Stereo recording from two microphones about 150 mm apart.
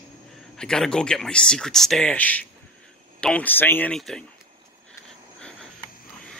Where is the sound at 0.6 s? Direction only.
5° left (ahead or behind).